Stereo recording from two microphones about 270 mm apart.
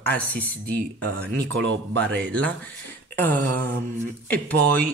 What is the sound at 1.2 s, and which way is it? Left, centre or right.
Speech, right.